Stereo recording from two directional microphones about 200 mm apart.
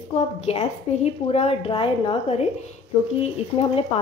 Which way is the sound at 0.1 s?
30° left (ahead or behind).